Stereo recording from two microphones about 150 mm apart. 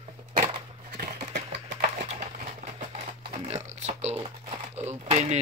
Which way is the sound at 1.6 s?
55° right (ahead or behind).